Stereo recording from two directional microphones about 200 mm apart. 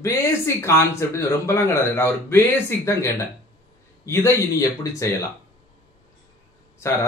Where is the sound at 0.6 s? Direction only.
15° left (ahead or behind).